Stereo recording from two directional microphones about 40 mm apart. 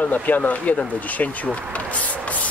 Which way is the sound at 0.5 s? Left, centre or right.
Left.